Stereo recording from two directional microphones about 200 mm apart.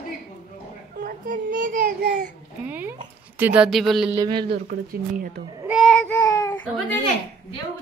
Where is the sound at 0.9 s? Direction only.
45° right (ahead or behind).